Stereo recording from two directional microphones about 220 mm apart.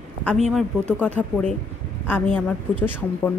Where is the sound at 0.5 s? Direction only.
Centre (ahead or behind).